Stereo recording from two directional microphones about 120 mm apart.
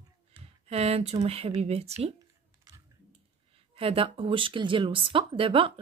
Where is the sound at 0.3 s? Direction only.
60° right (ahead or behind).